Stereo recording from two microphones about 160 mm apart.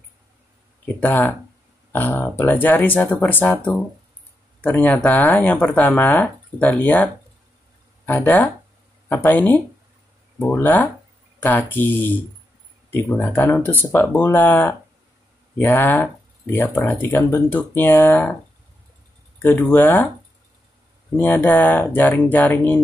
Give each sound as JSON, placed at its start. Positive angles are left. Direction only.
{"t": 1.0, "sound": "speech", "side_deg": 10}
{"t": 19.4, "sound": "speech", "side_deg": 10}
{"t": 21.2, "sound": "speech", "side_deg": 10}